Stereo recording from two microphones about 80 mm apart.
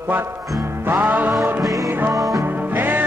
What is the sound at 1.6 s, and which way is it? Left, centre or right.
Music, centre.